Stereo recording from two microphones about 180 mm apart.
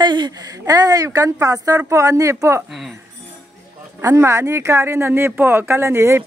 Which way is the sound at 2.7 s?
Centre (ahead or behind).